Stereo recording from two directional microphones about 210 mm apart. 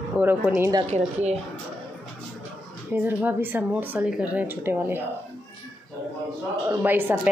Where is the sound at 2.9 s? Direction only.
10° right (ahead or behind).